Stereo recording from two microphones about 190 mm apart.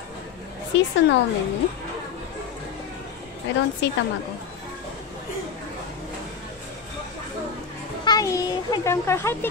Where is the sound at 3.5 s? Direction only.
70° left (ahead or behind).